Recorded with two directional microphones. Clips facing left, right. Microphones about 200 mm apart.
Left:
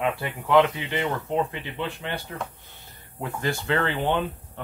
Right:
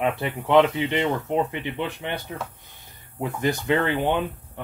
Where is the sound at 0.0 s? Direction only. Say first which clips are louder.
Right 2 dB; 20° right (ahead or behind).